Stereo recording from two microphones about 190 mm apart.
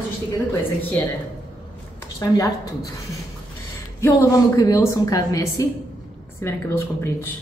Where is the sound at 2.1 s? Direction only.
15° left (ahead or behind).